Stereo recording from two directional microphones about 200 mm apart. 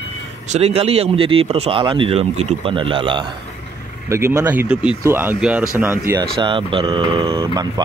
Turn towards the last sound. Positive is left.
turn(degrees=-20)  # may be behind; listen again after turning